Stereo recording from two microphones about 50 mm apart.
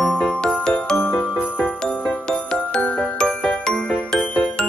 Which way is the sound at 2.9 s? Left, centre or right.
Centre.